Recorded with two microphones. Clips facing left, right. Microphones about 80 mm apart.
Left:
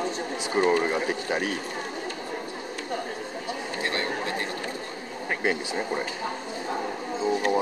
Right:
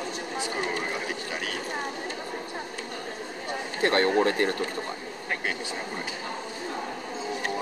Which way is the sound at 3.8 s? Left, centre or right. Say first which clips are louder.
Right 9 dB; right.